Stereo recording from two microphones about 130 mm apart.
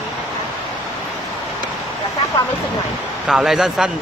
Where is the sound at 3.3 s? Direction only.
5° right (ahead or behind).